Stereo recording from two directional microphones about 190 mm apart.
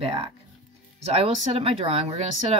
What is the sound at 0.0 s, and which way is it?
Speech, 30° right (ahead or behind).